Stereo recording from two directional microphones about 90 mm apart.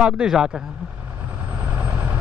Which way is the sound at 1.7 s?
20° right (ahead or behind).